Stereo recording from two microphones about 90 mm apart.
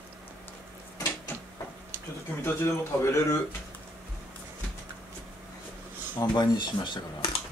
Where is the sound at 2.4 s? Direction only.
30° left (ahead or behind).